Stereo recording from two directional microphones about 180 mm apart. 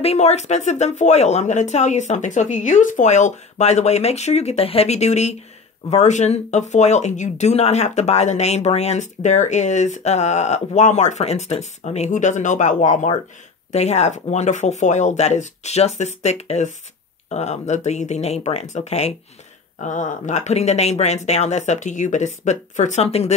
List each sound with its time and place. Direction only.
0.0 s speech: 35° left (ahead or behind)